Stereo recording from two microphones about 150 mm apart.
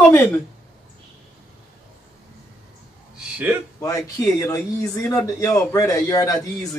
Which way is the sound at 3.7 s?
20° left (ahead or behind).